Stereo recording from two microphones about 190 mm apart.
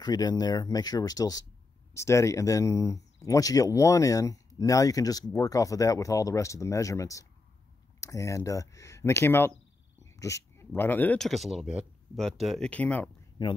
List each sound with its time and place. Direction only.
0.0 s speech: 20° left (ahead or behind)
13.4 s speech: 20° left (ahead or behind)